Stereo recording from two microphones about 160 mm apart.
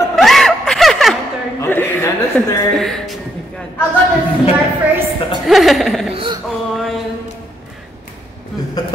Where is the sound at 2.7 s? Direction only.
5° left (ahead or behind).